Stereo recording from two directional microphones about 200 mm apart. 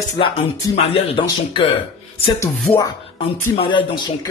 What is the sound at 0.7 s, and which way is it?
Speech, 30° left (ahead or behind).